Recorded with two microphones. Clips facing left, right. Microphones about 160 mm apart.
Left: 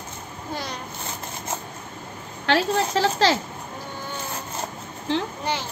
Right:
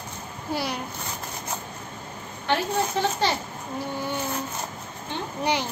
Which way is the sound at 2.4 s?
90° left.